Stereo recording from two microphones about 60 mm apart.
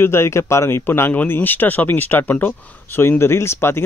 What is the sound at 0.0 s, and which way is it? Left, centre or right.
Speech, left.